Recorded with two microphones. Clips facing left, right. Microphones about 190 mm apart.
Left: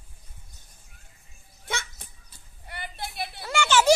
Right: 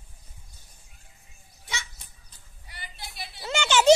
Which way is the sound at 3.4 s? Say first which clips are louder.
Left 1 dB; 20° right (ahead or behind).